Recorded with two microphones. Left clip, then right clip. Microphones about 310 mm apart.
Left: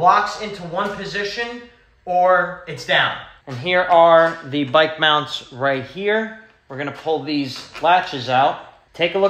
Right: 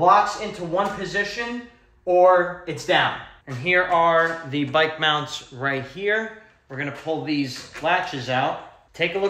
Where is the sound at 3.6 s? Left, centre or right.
Left.